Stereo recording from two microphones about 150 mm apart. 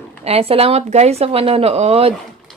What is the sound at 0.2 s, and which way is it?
Speech, 40° right (ahead or behind).